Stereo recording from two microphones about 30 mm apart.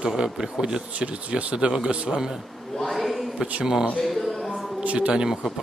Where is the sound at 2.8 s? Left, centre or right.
Centre.